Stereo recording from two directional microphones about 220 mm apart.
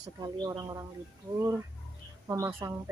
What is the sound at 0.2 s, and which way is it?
Speech, 20° right (ahead or behind).